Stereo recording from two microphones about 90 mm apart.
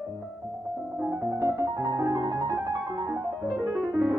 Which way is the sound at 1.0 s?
30° right (ahead or behind).